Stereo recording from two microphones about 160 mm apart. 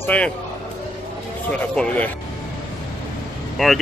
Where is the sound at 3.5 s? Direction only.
Centre (ahead or behind).